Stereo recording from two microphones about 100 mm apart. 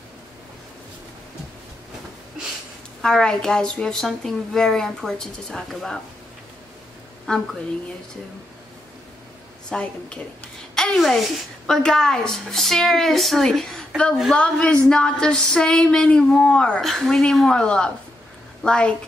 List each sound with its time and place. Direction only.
3.0 s a woman's voice: 5° left (ahead or behind)
7.3 s a woman's voice: 10° left (ahead or behind)
9.7 s a woman's voice: 10° left (ahead or behind)
14.3 s a sound: 10° left (ahead or behind)